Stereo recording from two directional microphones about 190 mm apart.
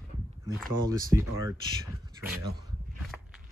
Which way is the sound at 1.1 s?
15° right (ahead or behind).